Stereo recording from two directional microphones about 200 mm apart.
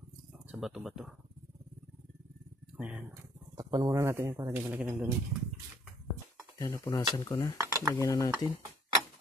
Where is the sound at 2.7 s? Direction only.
5° right (ahead or behind).